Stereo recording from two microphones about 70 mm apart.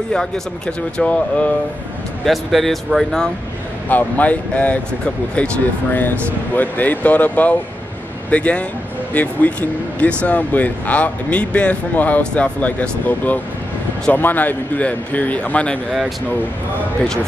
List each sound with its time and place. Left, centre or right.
0.1 s speech: centre
2.2 s speech: centre
3.9 s speech: left
5.9 s speech: left